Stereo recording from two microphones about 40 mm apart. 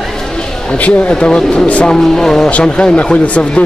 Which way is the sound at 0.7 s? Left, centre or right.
Left.